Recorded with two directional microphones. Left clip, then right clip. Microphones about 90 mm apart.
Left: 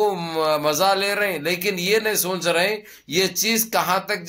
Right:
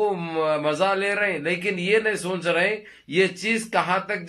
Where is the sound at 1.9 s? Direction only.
25° left (ahead or behind).